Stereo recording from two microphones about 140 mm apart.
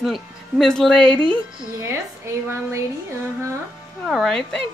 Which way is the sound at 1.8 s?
20° right (ahead or behind).